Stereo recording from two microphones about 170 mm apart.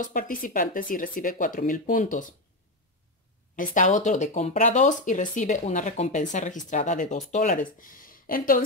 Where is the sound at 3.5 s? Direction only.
50° left (ahead or behind).